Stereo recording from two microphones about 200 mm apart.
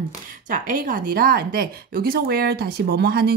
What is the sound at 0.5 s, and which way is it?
Speech, 45° right (ahead or behind).